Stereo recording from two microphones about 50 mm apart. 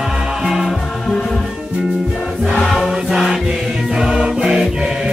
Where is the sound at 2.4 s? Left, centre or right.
Centre.